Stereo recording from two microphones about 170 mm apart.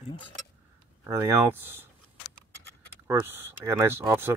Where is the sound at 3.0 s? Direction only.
15° right (ahead or behind).